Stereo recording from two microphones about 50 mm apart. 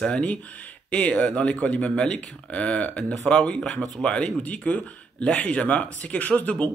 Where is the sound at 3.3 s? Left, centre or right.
Centre.